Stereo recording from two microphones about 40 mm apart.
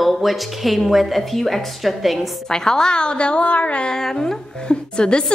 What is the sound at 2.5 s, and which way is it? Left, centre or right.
A woman's voice, centre.